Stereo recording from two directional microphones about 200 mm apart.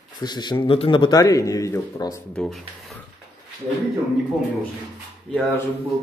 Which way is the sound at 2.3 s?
Centre (ahead or behind).